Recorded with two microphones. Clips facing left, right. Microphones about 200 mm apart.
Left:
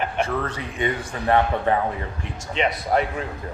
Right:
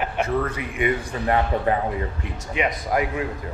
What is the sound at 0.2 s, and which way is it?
A man's voice, 30° left (ahead or behind).